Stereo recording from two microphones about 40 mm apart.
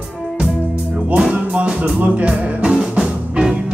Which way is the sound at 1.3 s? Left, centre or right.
Right.